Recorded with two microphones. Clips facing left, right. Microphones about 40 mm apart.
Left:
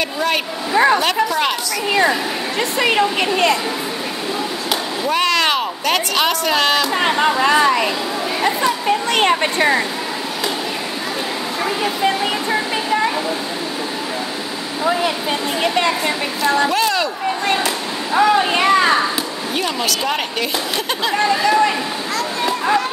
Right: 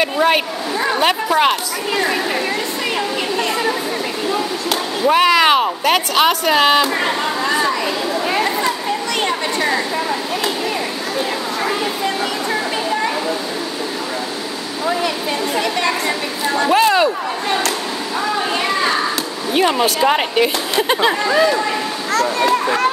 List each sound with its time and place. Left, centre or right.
0.0 s a sound: centre
0.9 s a woman's voice: centre
2.9 s a woman's voice: left
5.0 s a woman's voice: centre
7.2 s speech: left
8.4 s speech: centre
9.3 s a woman's voice: left
14.9 s speech: centre
16.7 s a woman's voice: centre
18.2 s a woman's voice: left
19.5 s speech: right
22.1 s a child's voice: right